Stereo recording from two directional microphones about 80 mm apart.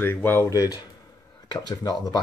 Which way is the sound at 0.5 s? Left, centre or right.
Left.